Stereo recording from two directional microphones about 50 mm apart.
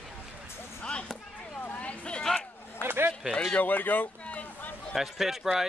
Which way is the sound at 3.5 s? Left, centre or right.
Left.